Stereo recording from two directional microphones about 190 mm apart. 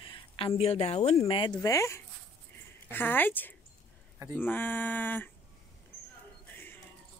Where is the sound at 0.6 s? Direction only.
35° left (ahead or behind).